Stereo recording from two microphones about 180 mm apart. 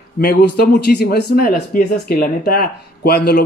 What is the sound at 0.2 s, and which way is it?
Speech, 60° left (ahead or behind).